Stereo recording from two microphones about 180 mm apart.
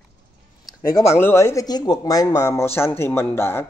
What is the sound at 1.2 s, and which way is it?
A man's voice, 15° left (ahead or behind).